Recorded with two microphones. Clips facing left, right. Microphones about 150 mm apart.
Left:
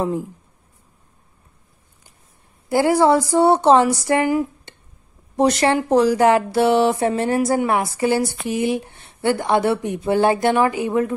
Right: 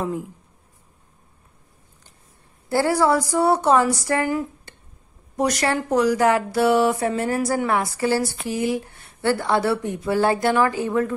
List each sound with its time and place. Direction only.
2.7 s speech: 20° left (ahead or behind)